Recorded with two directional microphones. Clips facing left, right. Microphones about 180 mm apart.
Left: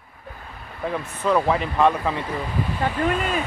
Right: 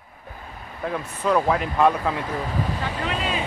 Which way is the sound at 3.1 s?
25° right (ahead or behind).